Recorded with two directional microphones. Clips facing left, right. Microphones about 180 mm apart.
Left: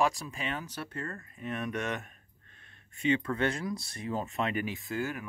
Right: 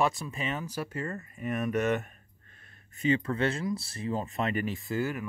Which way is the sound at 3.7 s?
5° right (ahead or behind).